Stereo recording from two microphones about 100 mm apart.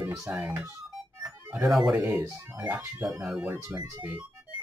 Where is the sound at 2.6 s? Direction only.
20° right (ahead or behind).